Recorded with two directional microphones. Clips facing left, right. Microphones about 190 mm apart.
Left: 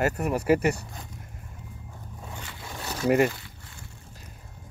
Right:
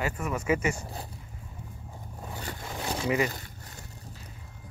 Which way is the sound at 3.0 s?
55° left (ahead or behind).